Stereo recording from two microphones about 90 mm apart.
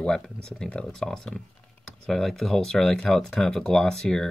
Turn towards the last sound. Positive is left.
turn(degrees=5)  # may be behind; listen again after turning